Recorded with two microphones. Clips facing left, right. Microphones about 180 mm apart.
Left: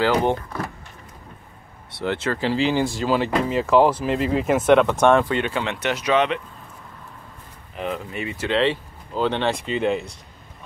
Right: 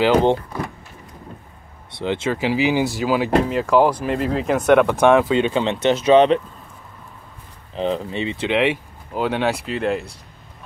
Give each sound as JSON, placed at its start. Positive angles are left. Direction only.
{"t": 0.0, "sound": "speech", "side_deg": -20}
{"t": 2.3, "sound": "speech", "side_deg": -10}
{"t": 5.2, "sound": "speech", "side_deg": -20}
{"t": 7.7, "sound": "speech", "side_deg": -30}